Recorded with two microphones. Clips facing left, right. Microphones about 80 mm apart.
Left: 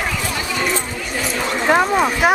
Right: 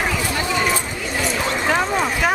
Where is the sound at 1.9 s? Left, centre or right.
Centre.